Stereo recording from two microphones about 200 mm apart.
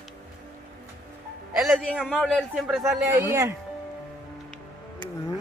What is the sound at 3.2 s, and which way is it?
Speech, 15° right (ahead or behind).